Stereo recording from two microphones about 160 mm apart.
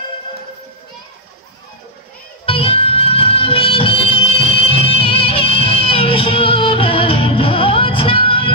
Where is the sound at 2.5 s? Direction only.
35° left (ahead or behind).